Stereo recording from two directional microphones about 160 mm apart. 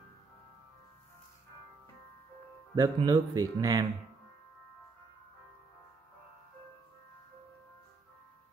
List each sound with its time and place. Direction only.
2.7 s speech: 25° right (ahead or behind)